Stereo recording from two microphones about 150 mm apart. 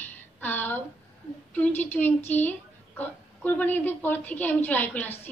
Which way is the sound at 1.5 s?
10° left (ahead or behind).